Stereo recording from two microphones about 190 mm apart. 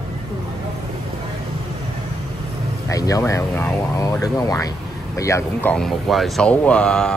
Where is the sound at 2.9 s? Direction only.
15° left (ahead or behind).